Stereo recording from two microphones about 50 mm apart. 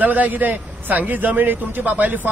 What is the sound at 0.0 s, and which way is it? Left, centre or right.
A man's voice, right.